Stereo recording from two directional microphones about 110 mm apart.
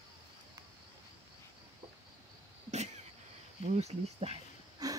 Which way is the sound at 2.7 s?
90° right.